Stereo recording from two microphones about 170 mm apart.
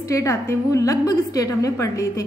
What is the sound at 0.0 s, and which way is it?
A woman's voice, 20° left (ahead or behind).